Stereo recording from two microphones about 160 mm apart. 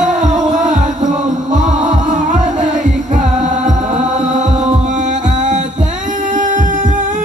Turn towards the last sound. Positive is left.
turn(degrees=-55)  # may be behind; listen again after turning